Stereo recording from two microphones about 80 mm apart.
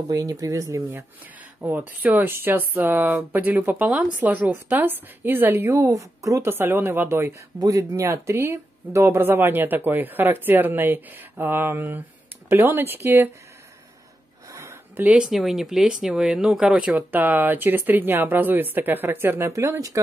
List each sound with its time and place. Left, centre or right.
0.1 s a woman's voice: right
1.6 s speech: right
5.8 s a woman's voice: right
6.5 s speech: right
14.5 s a sound: right
15.0 s speech: centre
17.1 s speech: right
19.5 s a woman's voice: right